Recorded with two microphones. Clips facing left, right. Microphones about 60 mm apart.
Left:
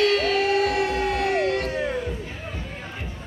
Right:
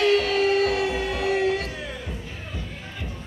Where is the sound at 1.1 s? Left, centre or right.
Centre.